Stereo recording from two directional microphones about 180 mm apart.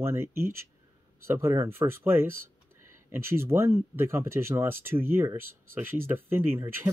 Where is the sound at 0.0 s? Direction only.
15° right (ahead or behind).